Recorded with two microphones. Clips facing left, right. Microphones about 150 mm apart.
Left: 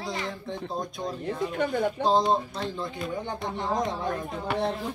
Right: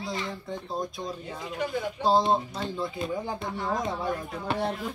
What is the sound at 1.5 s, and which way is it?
Speech, 55° left (ahead or behind).